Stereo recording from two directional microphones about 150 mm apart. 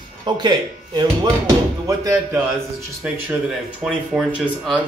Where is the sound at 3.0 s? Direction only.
10° right (ahead or behind).